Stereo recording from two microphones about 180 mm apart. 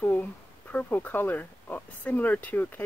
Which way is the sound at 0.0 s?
10° left (ahead or behind).